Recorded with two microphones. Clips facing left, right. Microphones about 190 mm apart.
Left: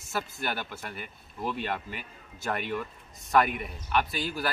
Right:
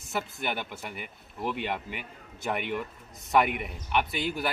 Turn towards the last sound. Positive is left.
turn(degrees=-20)  # may be behind; listen again after turning